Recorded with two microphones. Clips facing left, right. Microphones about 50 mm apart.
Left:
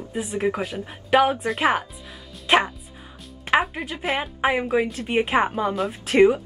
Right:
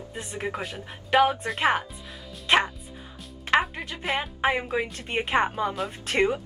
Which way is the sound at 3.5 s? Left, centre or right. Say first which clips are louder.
Left 2 dB; centre.